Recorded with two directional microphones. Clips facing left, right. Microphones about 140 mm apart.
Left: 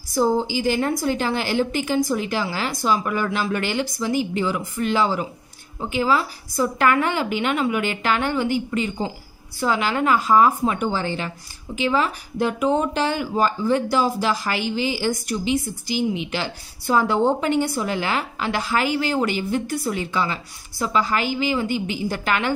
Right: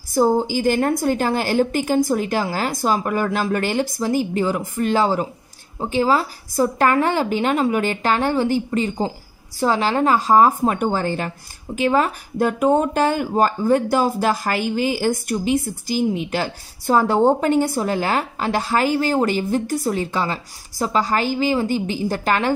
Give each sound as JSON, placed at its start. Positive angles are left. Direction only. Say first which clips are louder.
{"t": 0.1, "sound": "a woman's voice", "louder": "right 3 dB", "side_deg": -50}